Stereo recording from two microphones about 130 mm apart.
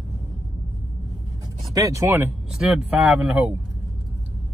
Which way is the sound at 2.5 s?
5° right (ahead or behind).